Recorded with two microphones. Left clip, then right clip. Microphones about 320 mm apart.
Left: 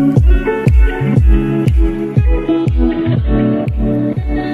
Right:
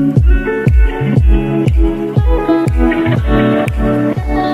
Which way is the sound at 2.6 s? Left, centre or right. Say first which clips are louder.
Right 3 dB; right.